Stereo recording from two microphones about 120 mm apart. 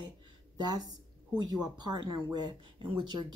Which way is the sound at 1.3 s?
35° right (ahead or behind).